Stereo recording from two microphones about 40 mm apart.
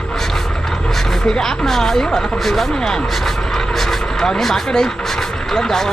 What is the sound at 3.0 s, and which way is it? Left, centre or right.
Speech, centre.